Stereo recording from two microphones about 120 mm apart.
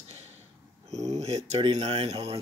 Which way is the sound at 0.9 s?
65° right (ahead or behind).